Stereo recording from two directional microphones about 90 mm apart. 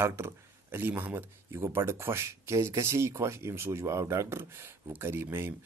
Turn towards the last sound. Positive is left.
turn(degrees=-25)  # may be behind; listen again after turning